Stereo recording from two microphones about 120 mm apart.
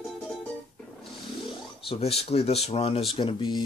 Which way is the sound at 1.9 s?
55° left (ahead or behind).